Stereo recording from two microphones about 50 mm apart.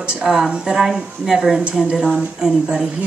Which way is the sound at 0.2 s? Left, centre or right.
Centre.